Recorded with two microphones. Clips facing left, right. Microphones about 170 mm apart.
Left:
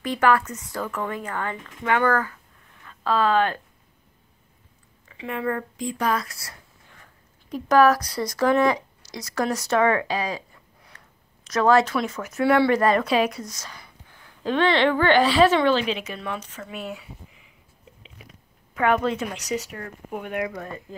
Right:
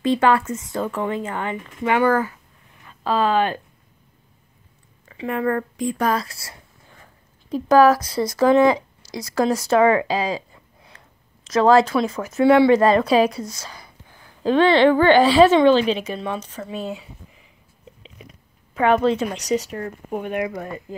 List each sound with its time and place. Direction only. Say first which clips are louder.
0.0 s speech: right 3 dB; 25° right (ahead or behind)
5.0 s speech: right 5 dB; 40° right (ahead or behind)
6.1 s speech: right 3 dB; 30° right (ahead or behind)
11.4 s speech: right 4 dB; 30° right (ahead or behind)
12.8 s a woman's voice: right 4 dB; 30° right (ahead or behind)
18.8 s speech: right 4 dB; 25° right (ahead or behind)